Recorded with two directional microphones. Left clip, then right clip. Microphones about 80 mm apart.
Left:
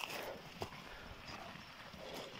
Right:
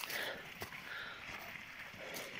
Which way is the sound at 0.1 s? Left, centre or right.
Centre.